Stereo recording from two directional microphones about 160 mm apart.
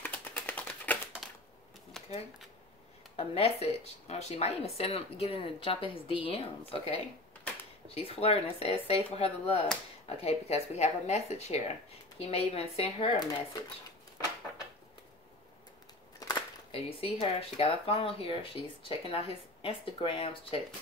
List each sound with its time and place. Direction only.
0.0 s typing: 10° left (ahead or behind)
1.2 s a sound: centre (ahead or behind)
2.0 s shuffling cards: 5° left (ahead or behind)
3.2 s speech: 40° left (ahead or behind)
7.5 s a sound: 10° left (ahead or behind)
7.9 s speech: 40° left (ahead or behind)
13.2 s speech: 25° left (ahead or behind)
16.2 s a sound: 25° left (ahead or behind)
16.7 s speech: 35° left (ahead or behind)